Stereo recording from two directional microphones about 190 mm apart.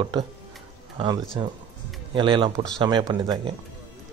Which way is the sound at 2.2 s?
25° right (ahead or behind).